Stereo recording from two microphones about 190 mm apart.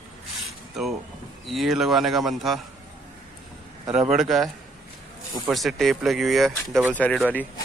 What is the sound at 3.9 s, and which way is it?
Speech, 5° right (ahead or behind).